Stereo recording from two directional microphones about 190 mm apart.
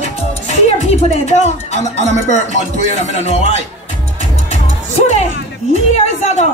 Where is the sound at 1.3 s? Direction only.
35° left (ahead or behind).